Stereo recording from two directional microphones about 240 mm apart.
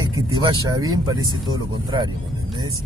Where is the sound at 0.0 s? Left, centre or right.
Centre.